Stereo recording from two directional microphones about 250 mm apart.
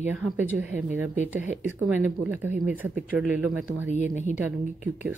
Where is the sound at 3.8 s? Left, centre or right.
Left.